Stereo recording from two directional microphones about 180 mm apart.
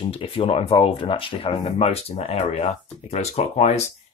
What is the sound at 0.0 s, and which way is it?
Speech, 30° left (ahead or behind).